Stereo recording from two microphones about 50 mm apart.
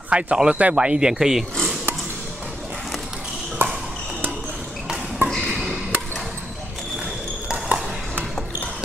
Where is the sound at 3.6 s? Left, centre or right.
Right.